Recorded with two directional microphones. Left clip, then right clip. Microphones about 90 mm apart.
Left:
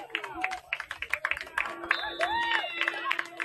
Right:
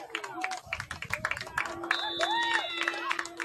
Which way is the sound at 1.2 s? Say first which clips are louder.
Even; 40° right (ahead or behind).